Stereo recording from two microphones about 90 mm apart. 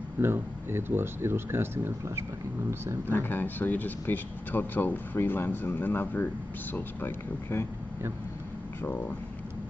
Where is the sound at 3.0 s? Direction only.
20° left (ahead or behind).